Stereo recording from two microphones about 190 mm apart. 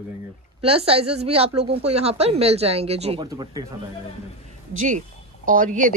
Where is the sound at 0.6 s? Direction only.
30° right (ahead or behind).